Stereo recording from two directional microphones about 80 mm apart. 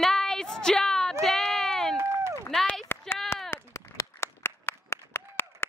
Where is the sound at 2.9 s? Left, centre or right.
Left.